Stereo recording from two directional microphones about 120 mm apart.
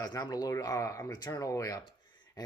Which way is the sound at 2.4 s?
35° left (ahead or behind).